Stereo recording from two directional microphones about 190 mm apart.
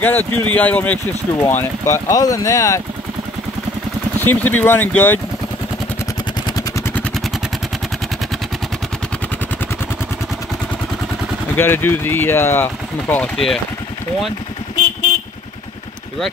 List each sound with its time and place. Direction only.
0.0 s speech: 10° left (ahead or behind)
4.2 s speech: 10° left (ahead or behind)
11.5 s speech: 10° left (ahead or behind)